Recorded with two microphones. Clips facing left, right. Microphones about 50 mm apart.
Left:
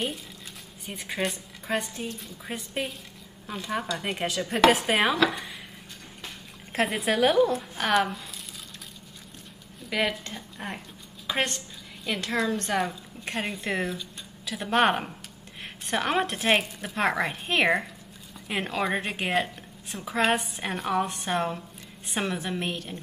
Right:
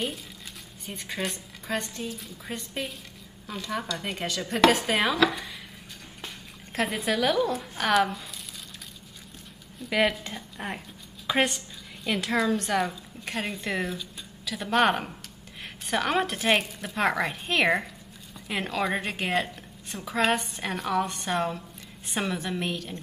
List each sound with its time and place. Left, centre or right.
0.8 s a woman's voice: centre
6.7 s a woman's voice: centre
9.8 s a woman's voice: centre